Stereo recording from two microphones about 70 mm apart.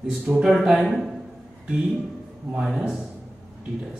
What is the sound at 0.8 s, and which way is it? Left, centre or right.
Speech, centre.